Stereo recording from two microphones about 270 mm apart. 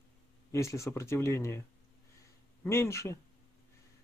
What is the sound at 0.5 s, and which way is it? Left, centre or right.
Speech, centre.